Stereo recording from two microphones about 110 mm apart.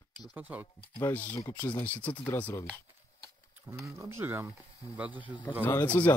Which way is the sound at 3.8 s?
20° right (ahead or behind).